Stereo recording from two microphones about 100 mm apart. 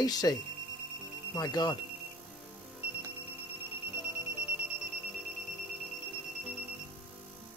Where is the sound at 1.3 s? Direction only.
40° left (ahead or behind).